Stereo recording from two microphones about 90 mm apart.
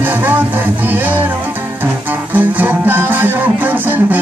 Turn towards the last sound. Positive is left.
turn(degrees=-20)  # may be behind; listen again after turning